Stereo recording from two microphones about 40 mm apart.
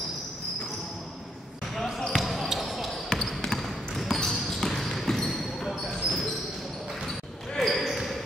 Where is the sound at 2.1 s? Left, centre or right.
Centre.